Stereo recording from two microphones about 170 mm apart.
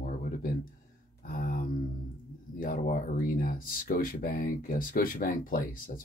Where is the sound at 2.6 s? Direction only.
55° left (ahead or behind).